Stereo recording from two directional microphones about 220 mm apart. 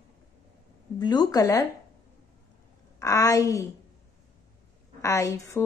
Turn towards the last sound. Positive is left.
turn(degrees=15)  # may be behind; listen again after turning